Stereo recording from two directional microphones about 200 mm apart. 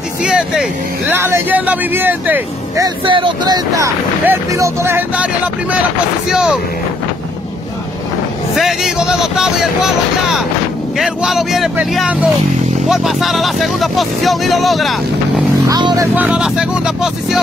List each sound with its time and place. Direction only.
0.2 s speech: 5° right (ahead or behind)
8.5 s speech: centre (ahead or behind)
15.7 s speech: 20° right (ahead or behind)
16.2 s speech: 5° right (ahead or behind)